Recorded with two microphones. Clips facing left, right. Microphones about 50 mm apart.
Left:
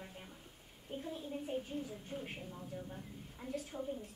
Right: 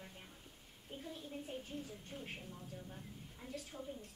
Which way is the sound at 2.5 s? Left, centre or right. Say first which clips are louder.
Left 5 dB; centre.